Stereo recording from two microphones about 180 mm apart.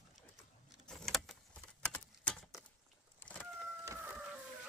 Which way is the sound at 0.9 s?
Centre (ahead or behind).